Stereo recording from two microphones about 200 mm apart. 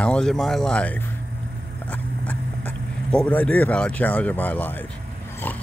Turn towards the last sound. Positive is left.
turn(degrees=10)  # may be behind; listen again after turning